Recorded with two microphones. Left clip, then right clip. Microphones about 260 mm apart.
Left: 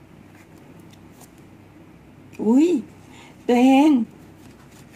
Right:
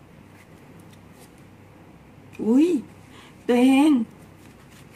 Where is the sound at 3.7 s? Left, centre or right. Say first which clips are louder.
Left 3 dB; right.